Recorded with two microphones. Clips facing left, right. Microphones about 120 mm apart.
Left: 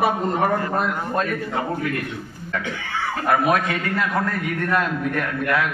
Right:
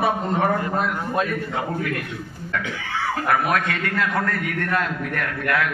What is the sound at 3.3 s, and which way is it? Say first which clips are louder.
A man's voice: left 3 dB; 20° left (ahead or behind).